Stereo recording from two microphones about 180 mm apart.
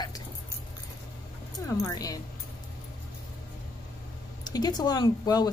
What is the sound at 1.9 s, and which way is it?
Speech, 20° left (ahead or behind).